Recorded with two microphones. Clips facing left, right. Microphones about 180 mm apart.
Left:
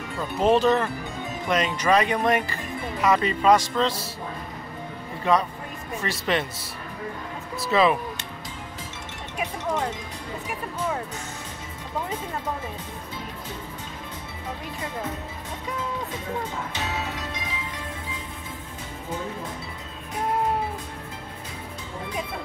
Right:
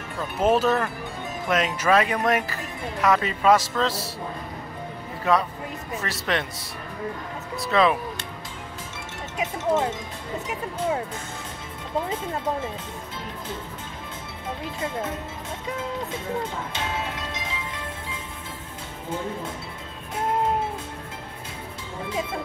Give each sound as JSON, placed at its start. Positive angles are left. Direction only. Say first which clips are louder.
{"t": 0.4, "sound": "speech", "louder": "left 1 dB", "side_deg": -5}
{"t": 5.3, "sound": "speech", "louder": "even", "side_deg": -5}
{"t": 7.5, "sound": "speech", "louder": "even", "side_deg": 0}
{"t": 9.4, "sound": "music", "louder": "right 4 dB", "side_deg": -25}